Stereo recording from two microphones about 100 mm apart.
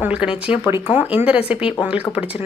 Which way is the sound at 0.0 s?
10° right (ahead or behind).